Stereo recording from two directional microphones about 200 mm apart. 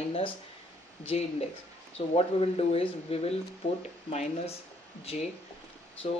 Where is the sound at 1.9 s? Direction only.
30° left (ahead or behind).